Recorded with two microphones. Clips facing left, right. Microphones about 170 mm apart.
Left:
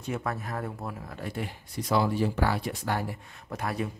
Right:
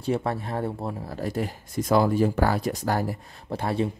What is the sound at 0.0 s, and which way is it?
Speech, 30° right (ahead or behind).